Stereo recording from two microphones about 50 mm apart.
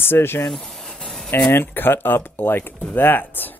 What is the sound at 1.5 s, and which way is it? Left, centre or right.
Speech, left.